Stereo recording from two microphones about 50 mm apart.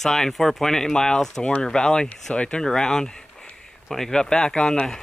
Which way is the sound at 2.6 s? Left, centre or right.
Centre.